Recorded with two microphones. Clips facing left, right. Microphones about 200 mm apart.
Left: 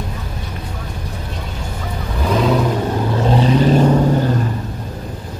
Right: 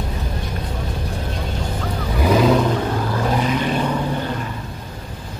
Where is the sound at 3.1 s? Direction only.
25° left (ahead or behind); by 4.0 s 40° left (ahead or behind).